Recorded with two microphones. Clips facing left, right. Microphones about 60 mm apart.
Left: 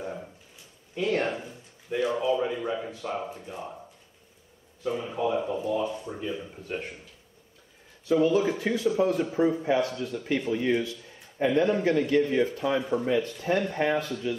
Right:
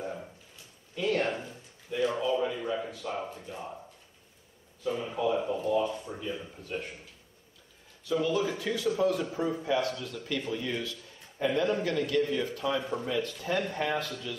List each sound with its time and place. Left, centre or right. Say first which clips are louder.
0.9 s speech: left 2 dB; left
5.1 s speech: left 1 dB; left
5.4 s speech: even; centre
6.0 s speech: left 3 dB; left
8.0 s speech: left 6 dB; left